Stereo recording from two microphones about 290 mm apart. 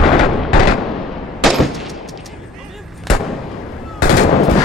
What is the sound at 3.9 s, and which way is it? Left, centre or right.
Gunshot, left.